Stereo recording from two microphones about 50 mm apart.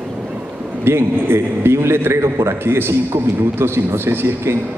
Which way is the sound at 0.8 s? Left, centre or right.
Right.